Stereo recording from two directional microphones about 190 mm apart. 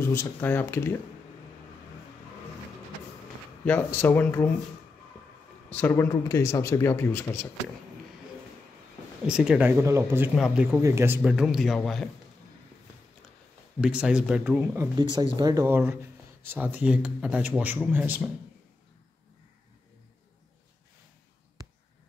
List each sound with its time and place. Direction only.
0.0 s speech: 15° left (ahead or behind)
3.6 s speech: 10° left (ahead or behind)
5.7 s speech: 10° left (ahead or behind)
9.3 s speech: 5° right (ahead or behind)
13.7 s speech: 5° right (ahead or behind)
15.0 s speech: 25° right (ahead or behind)